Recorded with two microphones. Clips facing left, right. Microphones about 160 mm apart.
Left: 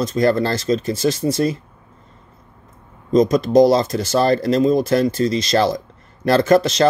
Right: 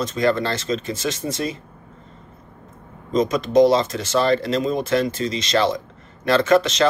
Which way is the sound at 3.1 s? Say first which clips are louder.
Left 6 dB; 35° left (ahead or behind).